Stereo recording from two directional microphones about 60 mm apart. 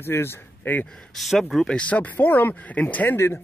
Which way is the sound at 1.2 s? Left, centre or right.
Centre.